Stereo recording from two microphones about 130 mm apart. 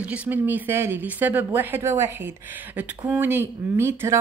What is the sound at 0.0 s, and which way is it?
Speech, 10° right (ahead or behind).